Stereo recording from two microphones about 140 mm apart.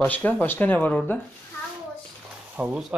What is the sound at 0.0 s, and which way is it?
Speech, 10° left (ahead or behind).